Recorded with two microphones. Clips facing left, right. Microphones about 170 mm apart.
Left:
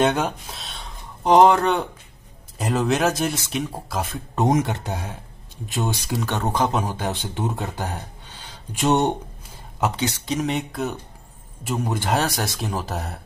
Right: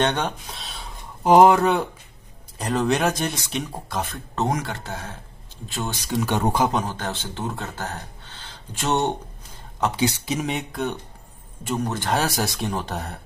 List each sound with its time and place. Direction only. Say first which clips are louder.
0.0 s speech: left 3 dB; 5° left (ahead or behind)
4.4 s speech: left 5 dB; 20° left (ahead or behind)
6.2 s speech: right 1 dB; 10° right (ahead or behind)
6.7 s speech: left 1 dB; 10° left (ahead or behind)
9.9 s speech: right 1 dB; 10° right (ahead or behind); by 12.2 s 10° left (ahead or behind)
12.2 s speech: even; centre (ahead or behind)